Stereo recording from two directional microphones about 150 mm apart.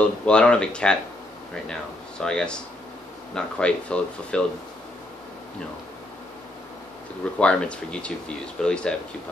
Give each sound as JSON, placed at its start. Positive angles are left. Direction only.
{"t": 0.0, "sound": "speech", "side_deg": 5}
{"t": 7.3, "sound": "speech", "side_deg": 5}